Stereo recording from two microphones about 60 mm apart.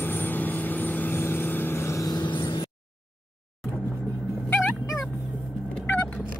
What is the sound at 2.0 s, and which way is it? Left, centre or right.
Vehicle, left.